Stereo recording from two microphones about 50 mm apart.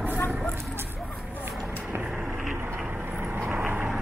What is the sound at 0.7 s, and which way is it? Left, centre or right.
Vehicle, right.